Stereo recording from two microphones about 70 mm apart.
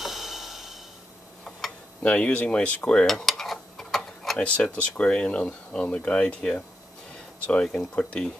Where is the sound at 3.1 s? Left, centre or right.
Centre.